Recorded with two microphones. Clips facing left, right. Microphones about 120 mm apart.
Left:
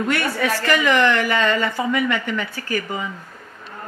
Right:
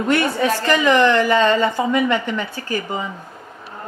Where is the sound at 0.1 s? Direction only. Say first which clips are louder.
Right 7 dB; 20° right (ahead or behind).